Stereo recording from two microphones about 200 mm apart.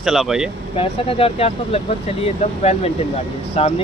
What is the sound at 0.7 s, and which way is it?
Speech, 30° left (ahead or behind).